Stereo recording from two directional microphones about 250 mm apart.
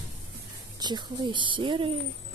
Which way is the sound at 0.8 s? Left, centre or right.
Centre.